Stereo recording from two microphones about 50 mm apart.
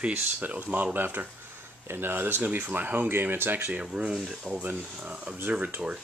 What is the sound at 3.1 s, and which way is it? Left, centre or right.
Speech, right.